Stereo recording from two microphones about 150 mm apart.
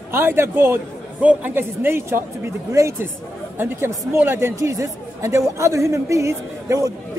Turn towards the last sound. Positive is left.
turn(degrees=-20)  # may be behind; listen again after turning